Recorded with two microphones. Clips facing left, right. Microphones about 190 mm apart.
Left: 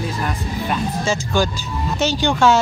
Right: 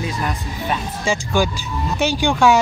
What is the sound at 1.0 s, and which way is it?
Speech, 15° right (ahead or behind).